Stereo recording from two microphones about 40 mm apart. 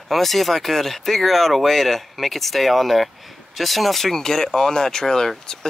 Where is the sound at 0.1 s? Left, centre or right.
Centre.